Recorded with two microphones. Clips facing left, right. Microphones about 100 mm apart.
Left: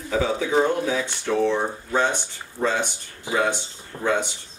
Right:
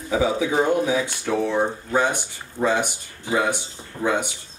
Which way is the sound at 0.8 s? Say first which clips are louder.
Right 1 dB; 15° right (ahead or behind).